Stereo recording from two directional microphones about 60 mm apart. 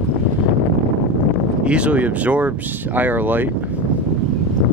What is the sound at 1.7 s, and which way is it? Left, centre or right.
Speech, right.